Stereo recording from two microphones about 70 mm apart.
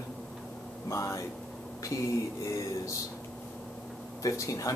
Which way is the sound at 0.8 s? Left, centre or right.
Left.